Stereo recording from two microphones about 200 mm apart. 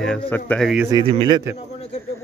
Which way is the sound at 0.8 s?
20° right (ahead or behind).